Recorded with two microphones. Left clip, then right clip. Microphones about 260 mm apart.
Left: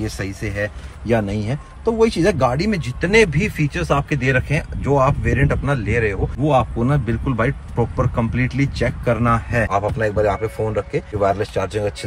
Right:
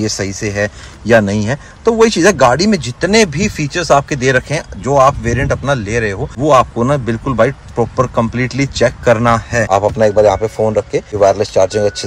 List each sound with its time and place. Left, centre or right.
0.0 s a man's voice: right